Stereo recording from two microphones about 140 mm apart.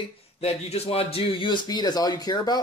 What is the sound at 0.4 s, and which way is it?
Speech, 45° left (ahead or behind).